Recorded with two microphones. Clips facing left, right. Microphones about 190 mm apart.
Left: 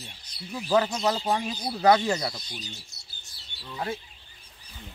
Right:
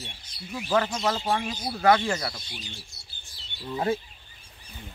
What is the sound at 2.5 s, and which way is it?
Speech, 40° left (ahead or behind).